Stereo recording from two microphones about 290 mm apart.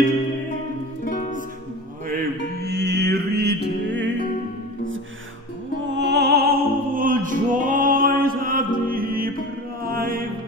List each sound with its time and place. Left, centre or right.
2.0 s music: right
5.9 s music: right
9.8 s mantra: right